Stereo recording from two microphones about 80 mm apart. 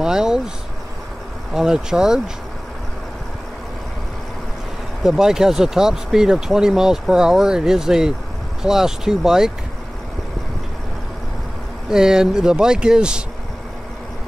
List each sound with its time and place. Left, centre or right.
0.0 s speech: centre
1.5 s speech: centre
5.0 s speech: centre
11.9 s speech: centre